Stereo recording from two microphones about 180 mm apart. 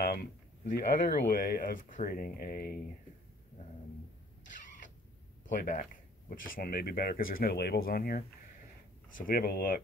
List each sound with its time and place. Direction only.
0.0 s speech: 60° left (ahead or behind)
5.7 s speech: 50° left (ahead or behind)
9.2 s speech: 55° left (ahead or behind)